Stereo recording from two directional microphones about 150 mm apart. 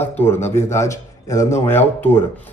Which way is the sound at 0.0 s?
15° left (ahead or behind).